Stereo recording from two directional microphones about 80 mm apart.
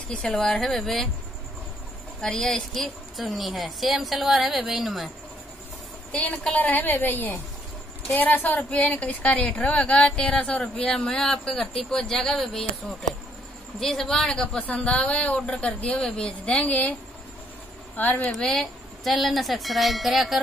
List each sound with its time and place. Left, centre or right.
0.1 s speech: centre
2.2 s speech: centre
6.1 s a woman's voice: centre
17.9 s a woman's voice: left
18.2 s speech: centre